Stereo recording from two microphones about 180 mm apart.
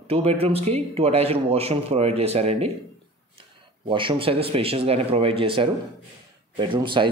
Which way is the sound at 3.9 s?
30° right (ahead or behind).